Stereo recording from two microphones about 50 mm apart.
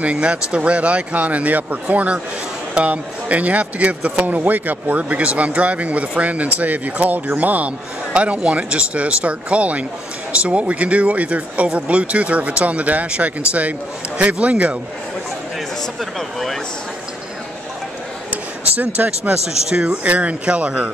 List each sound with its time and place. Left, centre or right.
0.0 s a man's voice: right
16.0 s speech: centre
19.0 s a man's voice: right
19.3 s a man's voice: centre